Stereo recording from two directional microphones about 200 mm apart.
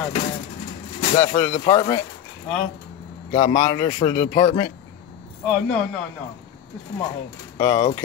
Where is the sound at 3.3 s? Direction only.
25° left (ahead or behind).